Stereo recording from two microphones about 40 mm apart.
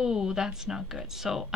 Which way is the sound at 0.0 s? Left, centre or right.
Centre.